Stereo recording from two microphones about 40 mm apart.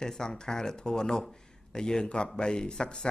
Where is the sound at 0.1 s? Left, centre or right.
Centre.